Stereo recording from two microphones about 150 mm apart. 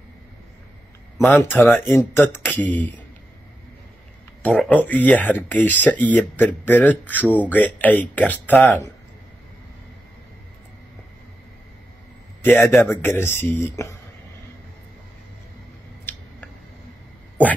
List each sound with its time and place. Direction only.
1.2 s speech: 10° left (ahead or behind)
4.8 s speech: 10° left (ahead or behind)
12.4 s a man's voice: 15° left (ahead or behind)
16.1 s scissors: 15° left (ahead or behind)